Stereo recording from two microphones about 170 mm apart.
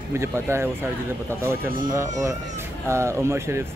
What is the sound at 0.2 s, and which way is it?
Speech, 15° right (ahead or behind).